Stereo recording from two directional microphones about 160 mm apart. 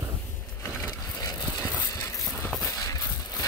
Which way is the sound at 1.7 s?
20° left (ahead or behind).